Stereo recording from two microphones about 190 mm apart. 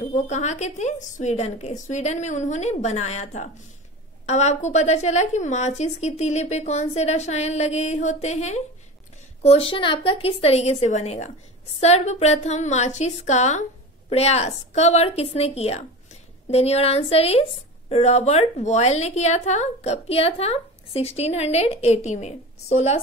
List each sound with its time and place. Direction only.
0.1 s a woman's voice: 40° left (ahead or behind)